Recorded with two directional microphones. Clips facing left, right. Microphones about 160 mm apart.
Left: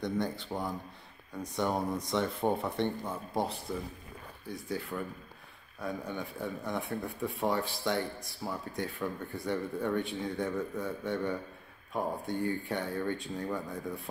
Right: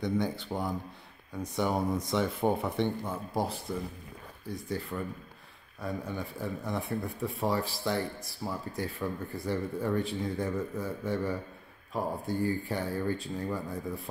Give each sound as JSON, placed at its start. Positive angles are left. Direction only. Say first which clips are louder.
{"t": 0.0, "sound": "speech", "louder": "right 2 dB", "side_deg": 0}